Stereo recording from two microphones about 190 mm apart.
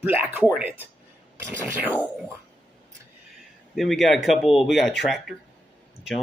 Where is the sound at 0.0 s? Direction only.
10° right (ahead or behind).